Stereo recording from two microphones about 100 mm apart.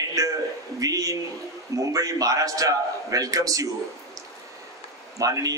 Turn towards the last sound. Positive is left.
turn(degrees=-35)  # may be behind; listen again after turning